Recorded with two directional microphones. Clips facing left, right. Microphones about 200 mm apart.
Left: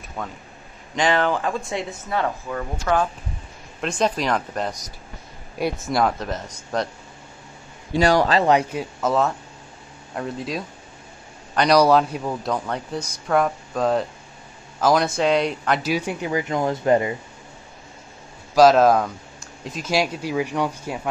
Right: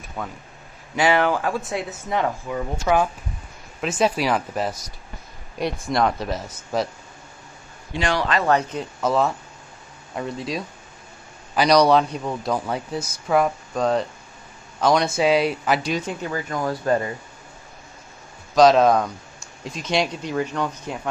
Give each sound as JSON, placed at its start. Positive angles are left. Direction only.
{"t": 0.2, "sound": "a man's voice", "side_deg": -5}
{"t": 2.0, "sound": "a man's voice", "side_deg": -15}
{"t": 7.9, "sound": "a man's voice", "side_deg": 40}
{"t": 8.5, "sound": "a man's voice", "side_deg": 10}
{"t": 15.9, "sound": "speech", "side_deg": 10}
{"t": 18.5, "sound": "a man's voice", "side_deg": 5}